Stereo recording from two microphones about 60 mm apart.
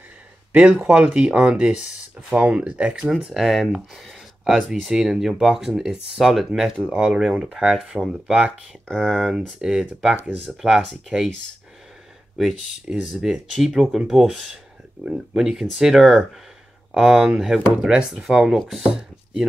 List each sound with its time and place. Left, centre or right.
0.5 s speech: centre
3.3 s speech: centre
8.9 s speech: centre
10.6 s speech: centre
11.1 s speech: right
12.4 s speech: centre